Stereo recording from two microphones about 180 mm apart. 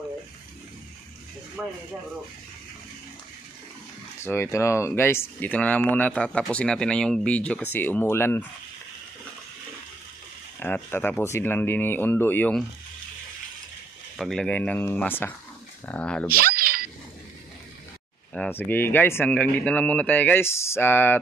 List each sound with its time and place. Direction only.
4.2 s speech: 15° left (ahead or behind)
10.6 s speech: 10° left (ahead or behind)
14.1 s speech: centre (ahead or behind)
16.3 s a sound: 55° right (ahead or behind)
18.3 s speech: 10° left (ahead or behind)